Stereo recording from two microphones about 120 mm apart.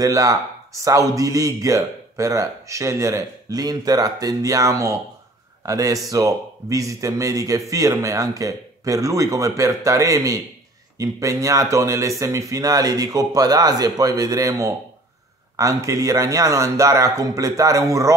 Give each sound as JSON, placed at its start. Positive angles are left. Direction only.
{"t": 0.0, "sound": "a man's voice", "side_deg": -30}